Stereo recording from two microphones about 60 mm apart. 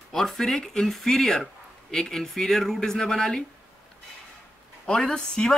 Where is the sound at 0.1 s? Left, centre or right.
Centre.